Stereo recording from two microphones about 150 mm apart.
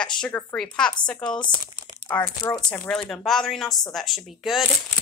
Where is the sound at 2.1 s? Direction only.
20° left (ahead or behind).